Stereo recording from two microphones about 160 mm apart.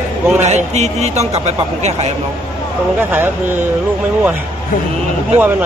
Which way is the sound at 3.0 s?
15° right (ahead or behind).